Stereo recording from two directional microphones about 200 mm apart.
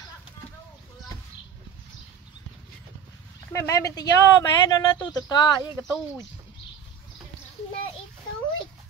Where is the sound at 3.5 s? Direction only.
15° left (ahead or behind).